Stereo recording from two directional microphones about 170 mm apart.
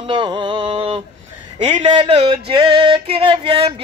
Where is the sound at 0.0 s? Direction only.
30° right (ahead or behind).